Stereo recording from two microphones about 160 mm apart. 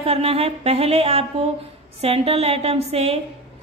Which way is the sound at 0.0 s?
40° right (ahead or behind).